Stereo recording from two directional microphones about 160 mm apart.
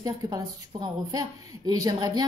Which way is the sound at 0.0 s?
25° right (ahead or behind).